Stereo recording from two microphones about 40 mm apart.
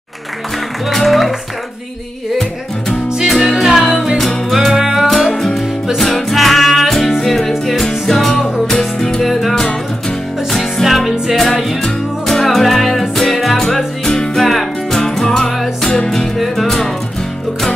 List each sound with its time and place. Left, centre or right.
0.8 s music: centre
3.3 s music: centre
5.0 s music: centre
9.2 s music: centre
16.3 s music: centre